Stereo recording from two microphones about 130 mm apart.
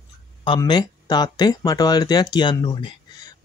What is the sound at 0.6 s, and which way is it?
Speech, 30° left (ahead or behind).